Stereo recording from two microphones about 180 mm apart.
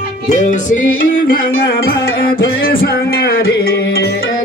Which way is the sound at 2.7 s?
55° left (ahead or behind).